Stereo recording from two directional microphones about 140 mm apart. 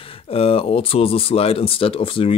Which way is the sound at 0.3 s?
45° left (ahead or behind).